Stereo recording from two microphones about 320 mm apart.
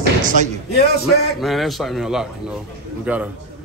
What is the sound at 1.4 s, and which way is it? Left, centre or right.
Speech, centre.